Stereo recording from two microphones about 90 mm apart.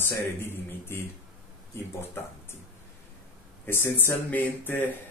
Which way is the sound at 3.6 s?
25° left (ahead or behind).